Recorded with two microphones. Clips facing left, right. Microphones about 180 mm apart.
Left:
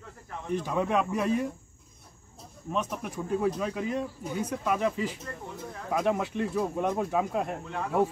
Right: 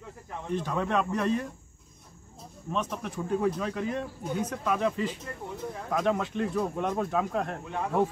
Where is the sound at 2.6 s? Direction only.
10° left (ahead or behind).